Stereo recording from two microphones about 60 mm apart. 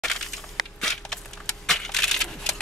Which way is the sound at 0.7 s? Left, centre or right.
Centre.